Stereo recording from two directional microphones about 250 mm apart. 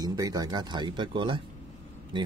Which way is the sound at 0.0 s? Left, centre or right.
Centre.